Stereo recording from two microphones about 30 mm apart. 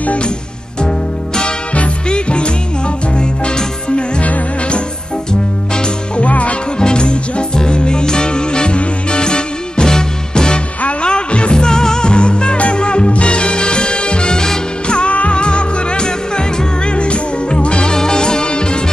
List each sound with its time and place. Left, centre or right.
0.7 s music: left
6.2 s music: left
6.8 s music: left
10.8 s music: left
11.1 s music: left
11.5 s music: left
12.1 s music: left
17.7 s music: left